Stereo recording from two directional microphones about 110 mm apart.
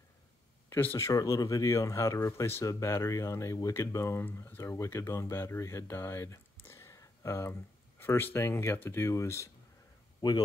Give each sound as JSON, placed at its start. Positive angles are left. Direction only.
{"t": 0.7, "sound": "speech", "side_deg": 20}